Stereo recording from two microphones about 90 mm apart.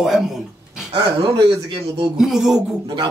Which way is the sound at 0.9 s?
65° right (ahead or behind).